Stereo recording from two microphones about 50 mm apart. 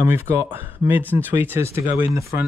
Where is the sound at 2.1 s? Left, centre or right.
Right.